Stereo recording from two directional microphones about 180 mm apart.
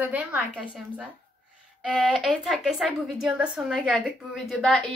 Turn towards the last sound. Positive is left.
turn(degrees=0)  # may be behind; listen again after turning